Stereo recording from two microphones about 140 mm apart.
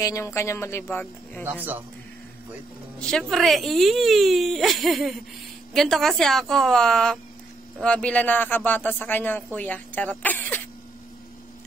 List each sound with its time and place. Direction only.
0.0 s speech: 20° left (ahead or behind)
1.4 s speech: 15° right (ahead or behind)
3.0 s a man's voice: 5° left (ahead or behind)